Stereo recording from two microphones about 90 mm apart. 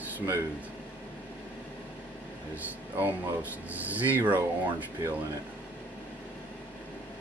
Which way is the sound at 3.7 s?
20° right (ahead or behind).